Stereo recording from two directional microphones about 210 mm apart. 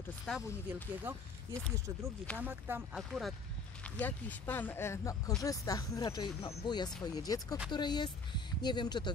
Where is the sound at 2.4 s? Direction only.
10° right (ahead or behind).